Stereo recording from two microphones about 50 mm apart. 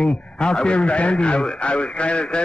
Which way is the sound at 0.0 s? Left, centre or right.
Centre.